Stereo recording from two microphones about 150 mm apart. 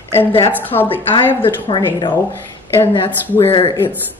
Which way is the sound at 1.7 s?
30° left (ahead or behind).